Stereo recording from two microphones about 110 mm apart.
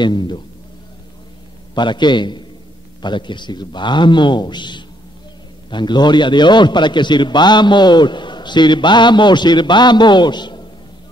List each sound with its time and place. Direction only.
0.0 s a man's voice: 45° left (ahead or behind)
1.8 s a man's voice: 45° left (ahead or behind)